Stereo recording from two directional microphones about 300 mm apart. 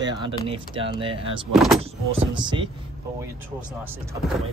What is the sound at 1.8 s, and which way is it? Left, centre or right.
Speech, centre.